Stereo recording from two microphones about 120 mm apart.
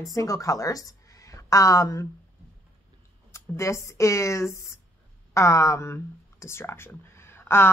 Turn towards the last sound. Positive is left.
turn(degrees=20)  # may be behind; listen again after turning